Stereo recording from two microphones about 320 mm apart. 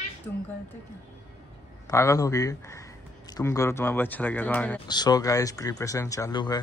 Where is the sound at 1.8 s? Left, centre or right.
Centre.